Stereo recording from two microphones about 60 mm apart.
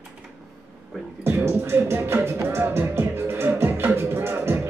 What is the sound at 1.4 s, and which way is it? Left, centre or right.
Music, right.